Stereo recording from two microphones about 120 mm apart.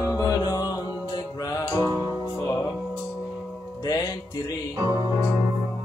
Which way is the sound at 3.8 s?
30° left (ahead or behind).